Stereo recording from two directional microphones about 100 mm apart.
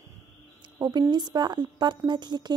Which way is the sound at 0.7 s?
45° right (ahead or behind).